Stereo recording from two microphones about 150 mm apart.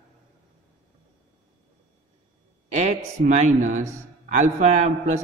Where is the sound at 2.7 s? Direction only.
50° right (ahead or behind).